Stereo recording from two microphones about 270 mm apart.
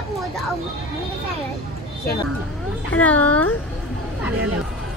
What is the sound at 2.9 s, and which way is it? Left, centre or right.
Speech, centre.